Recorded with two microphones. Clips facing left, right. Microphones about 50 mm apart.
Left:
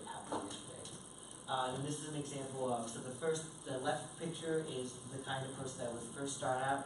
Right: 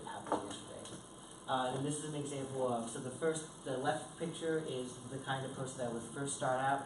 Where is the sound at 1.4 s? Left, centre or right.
Centre.